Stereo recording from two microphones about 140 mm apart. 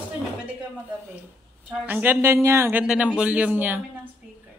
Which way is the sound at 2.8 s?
5° right (ahead or behind).